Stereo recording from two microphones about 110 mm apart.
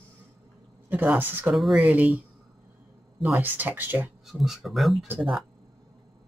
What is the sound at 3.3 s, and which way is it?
Speech, 15° right (ahead or behind).